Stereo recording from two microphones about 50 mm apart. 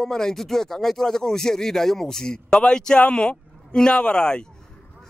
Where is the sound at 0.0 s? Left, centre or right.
Centre.